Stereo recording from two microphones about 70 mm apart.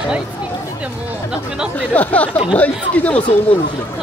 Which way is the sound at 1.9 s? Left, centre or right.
Left.